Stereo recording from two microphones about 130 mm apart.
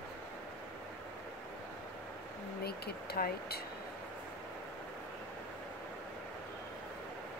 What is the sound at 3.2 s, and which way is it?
Speech, 90° left.